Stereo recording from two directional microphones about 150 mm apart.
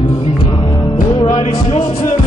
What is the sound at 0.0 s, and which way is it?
Music, 35° left (ahead or behind).